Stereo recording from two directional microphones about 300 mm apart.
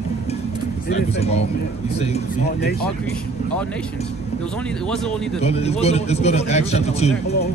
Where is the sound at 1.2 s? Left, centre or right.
Left.